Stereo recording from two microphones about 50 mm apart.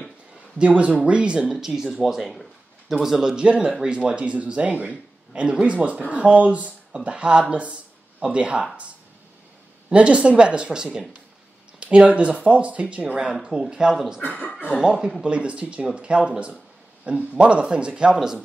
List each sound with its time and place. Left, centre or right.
0.6 s a man's voice: right
1.6 s speech: centre
3.3 s a man's voice: right
9.9 s a man's voice: right
14.2 s speech: left
14.8 s a man's voice: centre